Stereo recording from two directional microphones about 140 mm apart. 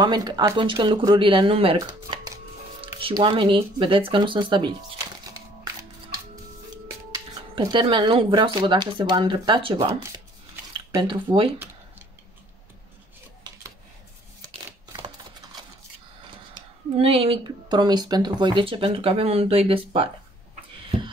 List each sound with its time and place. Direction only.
0.0 s speech: 30° right (ahead or behind)
2.1 s chopping: 35° right (ahead or behind)
3.0 s speech: 40° right (ahead or behind)
7.1 s speech: 30° right (ahead or behind)
16.9 s speech: 45° right (ahead or behind)